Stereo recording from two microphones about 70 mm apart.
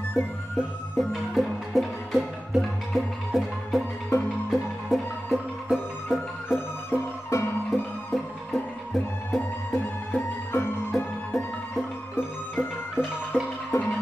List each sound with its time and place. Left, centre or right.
1.0 s music: centre
4.1 s music: left
4.5 s music: centre
6.9 s music: left
7.7 s music: centre
9.8 s music: left